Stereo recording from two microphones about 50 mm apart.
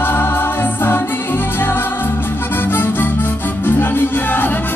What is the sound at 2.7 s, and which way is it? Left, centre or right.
Music, left.